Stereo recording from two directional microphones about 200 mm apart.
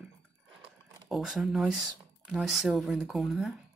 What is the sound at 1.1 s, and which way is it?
Speech, centre (ahead or behind).